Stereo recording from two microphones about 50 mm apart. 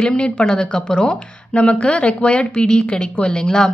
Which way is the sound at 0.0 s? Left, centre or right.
Centre.